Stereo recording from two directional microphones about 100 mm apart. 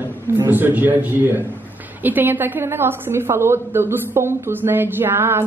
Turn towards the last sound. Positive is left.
turn(degrees=-25)  # may be behind; listen again after turning